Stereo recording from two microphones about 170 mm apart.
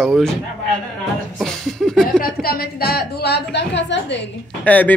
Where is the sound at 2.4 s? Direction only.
65° left (ahead or behind); by 4.2 s 90° left.